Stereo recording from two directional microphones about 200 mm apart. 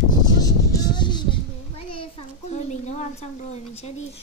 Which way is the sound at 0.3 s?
20° left (ahead or behind).